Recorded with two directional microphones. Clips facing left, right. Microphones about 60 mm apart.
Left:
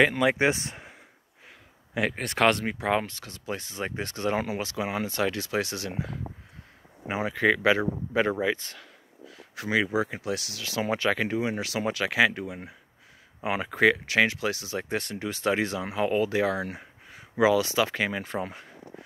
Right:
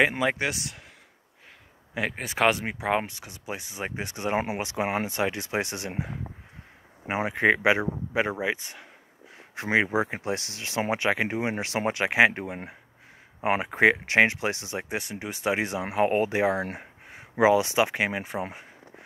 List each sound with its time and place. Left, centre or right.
0.4 s speech: left
2.0 s speech: centre; by 7.8 s right
7.8 s speech: centre
9.6 s speech: right